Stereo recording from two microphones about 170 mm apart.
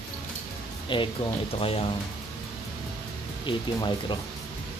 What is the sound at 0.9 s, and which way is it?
Speech, 30° left (ahead or behind).